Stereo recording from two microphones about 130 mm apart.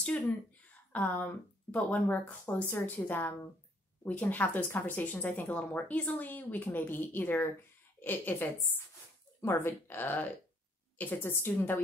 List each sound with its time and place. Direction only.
0.9 s a woman's voice: 10° left (ahead or behind)